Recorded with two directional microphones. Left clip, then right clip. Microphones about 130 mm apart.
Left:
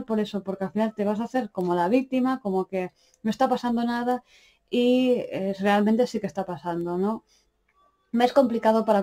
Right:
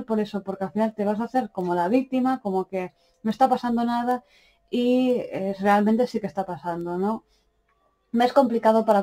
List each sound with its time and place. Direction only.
0.0 s speech: 40° left (ahead or behind)